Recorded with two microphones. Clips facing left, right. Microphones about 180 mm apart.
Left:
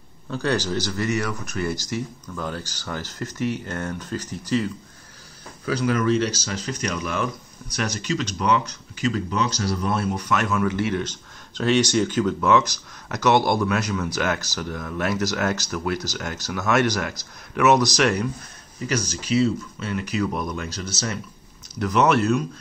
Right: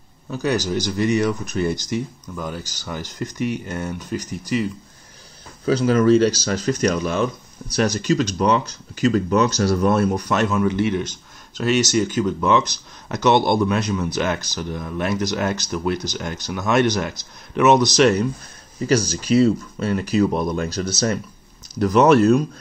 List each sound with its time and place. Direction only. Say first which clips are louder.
0.3 s speech: right 2 dB; 10° right (ahead or behind)
5.7 s speech: right 6 dB; 30° right (ahead or behind)